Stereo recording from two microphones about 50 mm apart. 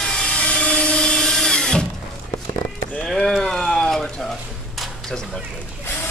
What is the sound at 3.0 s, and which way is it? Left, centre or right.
Speech, centre.